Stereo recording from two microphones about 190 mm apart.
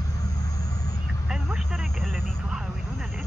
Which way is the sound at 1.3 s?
5° right (ahead or behind).